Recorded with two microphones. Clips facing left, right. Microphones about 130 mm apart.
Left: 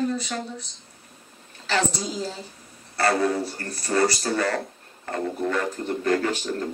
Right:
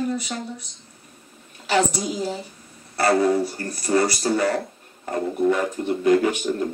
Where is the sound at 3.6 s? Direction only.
20° right (ahead or behind).